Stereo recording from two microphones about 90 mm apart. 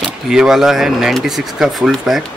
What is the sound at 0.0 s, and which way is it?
Speech, 5° right (ahead or behind).